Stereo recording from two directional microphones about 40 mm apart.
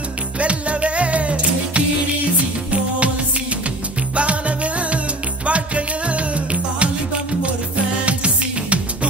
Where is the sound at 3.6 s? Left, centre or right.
Right.